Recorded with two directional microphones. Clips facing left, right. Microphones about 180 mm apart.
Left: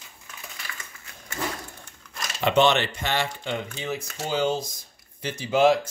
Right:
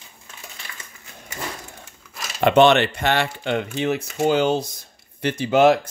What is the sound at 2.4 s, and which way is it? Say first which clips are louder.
Speech: right 6 dB; 60° right (ahead or behind).